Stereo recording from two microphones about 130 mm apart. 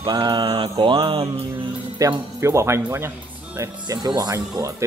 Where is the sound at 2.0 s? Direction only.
25° right (ahead or behind).